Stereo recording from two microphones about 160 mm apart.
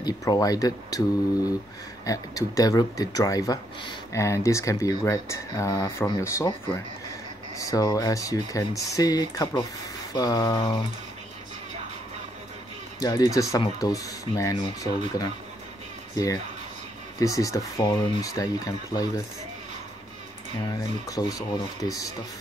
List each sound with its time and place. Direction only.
0.0 s speech: 25° left (ahead or behind)
7.5 s speech: 20° left (ahead or behind)
13.0 s speech: 25° left (ahead or behind)
17.2 s speech: 20° left (ahead or behind)
21.1 s speech: 20° left (ahead or behind)